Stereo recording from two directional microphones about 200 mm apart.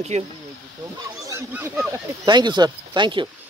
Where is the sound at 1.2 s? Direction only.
10° right (ahead or behind).